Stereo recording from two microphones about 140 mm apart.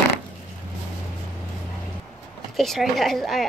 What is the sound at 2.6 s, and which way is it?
Speech, centre (ahead or behind).